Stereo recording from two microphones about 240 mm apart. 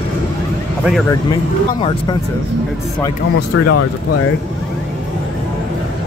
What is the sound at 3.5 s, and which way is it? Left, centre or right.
Speech, left.